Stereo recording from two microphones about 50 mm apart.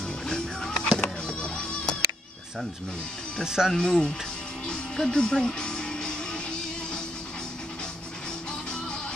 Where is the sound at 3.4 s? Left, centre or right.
Centre.